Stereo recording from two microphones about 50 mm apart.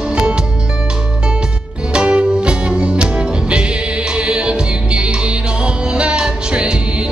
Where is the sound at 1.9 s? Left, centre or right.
Right.